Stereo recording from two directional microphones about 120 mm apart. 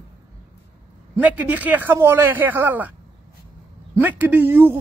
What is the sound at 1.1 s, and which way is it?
Speech, 15° right (ahead or behind).